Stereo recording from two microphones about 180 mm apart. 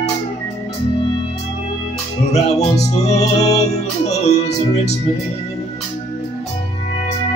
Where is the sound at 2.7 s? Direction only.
40° left (ahead or behind).